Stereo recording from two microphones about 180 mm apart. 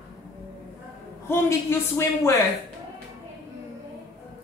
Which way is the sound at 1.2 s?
15° left (ahead or behind).